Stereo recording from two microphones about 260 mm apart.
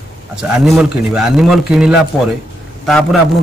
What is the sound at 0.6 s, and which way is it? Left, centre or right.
Speech, centre.